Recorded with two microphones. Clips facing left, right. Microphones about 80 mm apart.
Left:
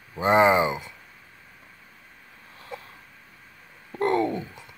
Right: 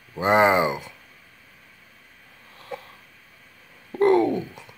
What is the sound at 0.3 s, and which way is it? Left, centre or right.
Speech, right.